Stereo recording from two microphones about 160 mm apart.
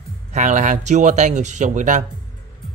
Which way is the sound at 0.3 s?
50° right (ahead or behind).